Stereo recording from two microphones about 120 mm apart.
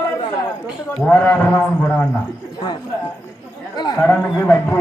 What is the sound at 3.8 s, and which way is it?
Speech, 35° left (ahead or behind).